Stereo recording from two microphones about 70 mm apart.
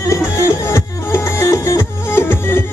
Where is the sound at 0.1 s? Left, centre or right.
Left.